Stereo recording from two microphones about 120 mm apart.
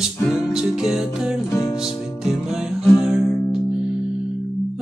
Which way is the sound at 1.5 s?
30° left (ahead or behind).